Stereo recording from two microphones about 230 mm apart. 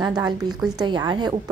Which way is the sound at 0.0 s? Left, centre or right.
Centre.